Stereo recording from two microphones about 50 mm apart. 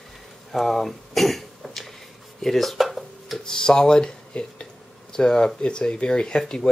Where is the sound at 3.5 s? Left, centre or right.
Centre.